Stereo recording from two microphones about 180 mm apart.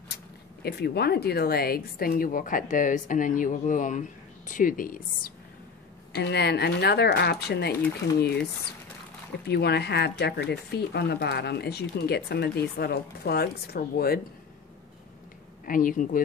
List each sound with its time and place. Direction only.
0.1 s speech: 60° left (ahead or behind)
6.1 s speech: 65° left (ahead or behind)
9.5 s speech: 65° left (ahead or behind)
15.6 s speech: 50° left (ahead or behind)